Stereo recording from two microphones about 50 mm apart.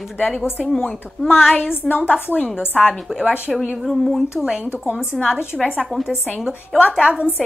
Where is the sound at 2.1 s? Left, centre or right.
Left.